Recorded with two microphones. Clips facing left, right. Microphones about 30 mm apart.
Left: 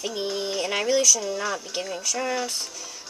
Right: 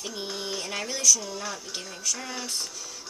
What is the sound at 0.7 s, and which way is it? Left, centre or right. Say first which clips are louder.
Speech: left 8 dB; left.